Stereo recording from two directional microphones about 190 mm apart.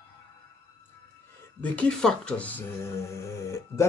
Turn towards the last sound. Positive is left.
turn(degrees=15)  # may be behind; listen again after turning